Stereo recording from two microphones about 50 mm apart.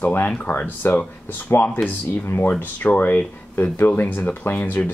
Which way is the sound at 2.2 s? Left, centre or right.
Left.